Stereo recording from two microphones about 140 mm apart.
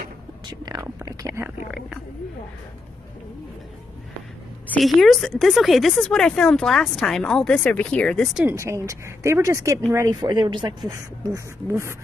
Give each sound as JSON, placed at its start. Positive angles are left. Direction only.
{"t": 0.5, "sound": "speech", "side_deg": -30}
{"t": 4.6, "sound": "a woman's voice", "side_deg": 0}
{"t": 8.5, "sound": "speech", "side_deg": -20}
{"t": 10.9, "sound": "speech", "side_deg": -20}